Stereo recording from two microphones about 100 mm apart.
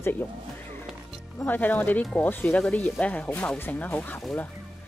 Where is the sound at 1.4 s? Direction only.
15° left (ahead or behind).